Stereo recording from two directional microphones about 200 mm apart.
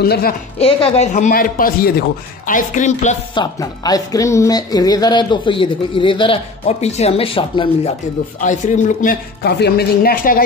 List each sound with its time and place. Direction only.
0.0 s speech: 50° left (ahead or behind)
0.6 s a man's voice: 30° left (ahead or behind)
3.3 s a man's voice: 20° left (ahead or behind)
8.4 s speech: 40° left (ahead or behind)